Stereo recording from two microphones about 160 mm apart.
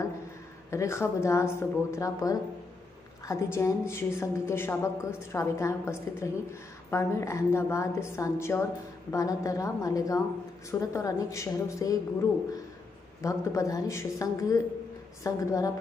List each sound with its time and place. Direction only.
0.7 s a woman's voice: 15° left (ahead or behind)
13.2 s a woman's voice: 20° left (ahead or behind)